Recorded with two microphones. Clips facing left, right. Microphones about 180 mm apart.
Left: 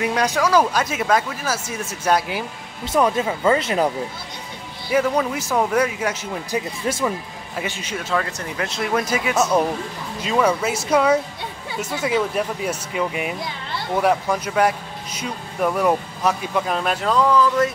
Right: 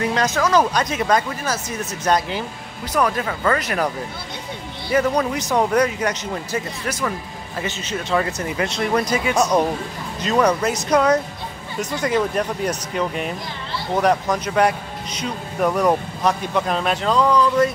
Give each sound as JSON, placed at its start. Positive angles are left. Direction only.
{"t": 0.0, "sound": "speech", "side_deg": 10}
{"t": 2.9, "sound": "speech", "side_deg": 25}
{"t": 4.9, "sound": "speech", "side_deg": 5}
{"t": 8.1, "sound": "speech", "side_deg": -5}